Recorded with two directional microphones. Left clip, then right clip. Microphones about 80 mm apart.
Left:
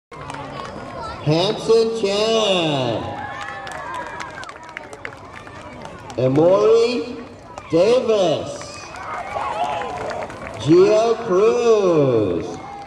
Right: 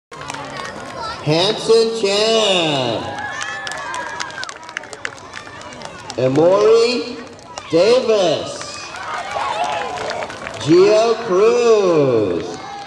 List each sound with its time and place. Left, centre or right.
1.2 s speech: centre
3.0 s run: right
6.1 s speech: centre
9.4 s run: centre
10.6 s speech: centre